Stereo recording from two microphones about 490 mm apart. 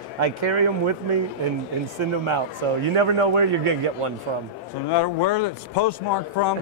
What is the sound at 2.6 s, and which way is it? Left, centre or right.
Speech, right.